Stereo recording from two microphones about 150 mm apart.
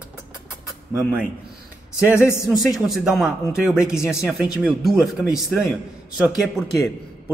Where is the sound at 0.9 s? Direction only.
10° right (ahead or behind).